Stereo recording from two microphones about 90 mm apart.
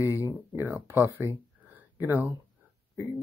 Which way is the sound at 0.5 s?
25° right (ahead or behind).